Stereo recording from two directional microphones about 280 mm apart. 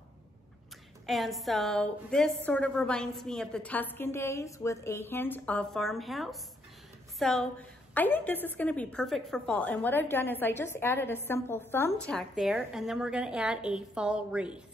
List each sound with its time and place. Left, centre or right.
1.0 s a woman's voice: centre